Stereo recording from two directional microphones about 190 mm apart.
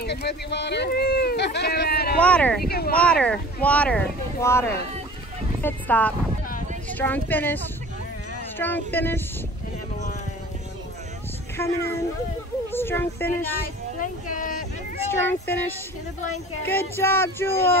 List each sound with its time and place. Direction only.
0.0 s a man's voice: 60° left (ahead or behind)
2.1 s speech: 5° left (ahead or behind)
2.7 s a man's voice: 55° left (ahead or behind)
3.0 s speech: 5° left (ahead or behind)
11.5 s speech: 15° left (ahead or behind)
13.9 s a sound: 45° left (ahead or behind)
15.0 s speech: 10° left (ahead or behind)